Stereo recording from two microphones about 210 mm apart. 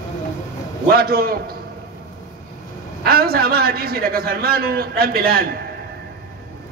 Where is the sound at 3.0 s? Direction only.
45° right (ahead or behind).